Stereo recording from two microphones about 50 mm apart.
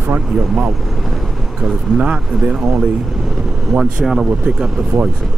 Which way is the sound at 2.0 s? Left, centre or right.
Right.